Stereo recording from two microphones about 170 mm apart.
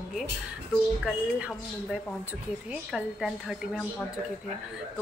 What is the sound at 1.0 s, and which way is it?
A woman's voice, 5° right (ahead or behind).